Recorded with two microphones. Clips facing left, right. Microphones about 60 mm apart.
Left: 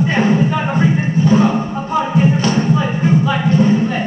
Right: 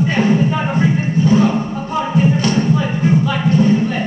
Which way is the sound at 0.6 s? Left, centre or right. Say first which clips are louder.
Left 1 dB; left.